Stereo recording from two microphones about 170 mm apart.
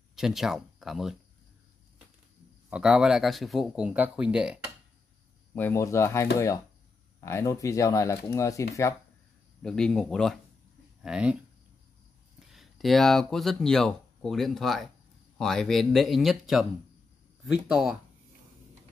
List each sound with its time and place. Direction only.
0.1 s speech: centre (ahead or behind)
2.7 s speech: 5° right (ahead or behind)
5.5 s speech: 10° left (ahead or behind)
9.6 s speech: 5° left (ahead or behind)
12.4 s speech: centre (ahead or behind)
17.6 s speech: 5° right (ahead or behind)